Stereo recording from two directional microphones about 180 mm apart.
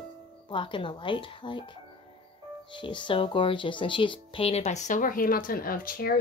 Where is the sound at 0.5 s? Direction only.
25° left (ahead or behind).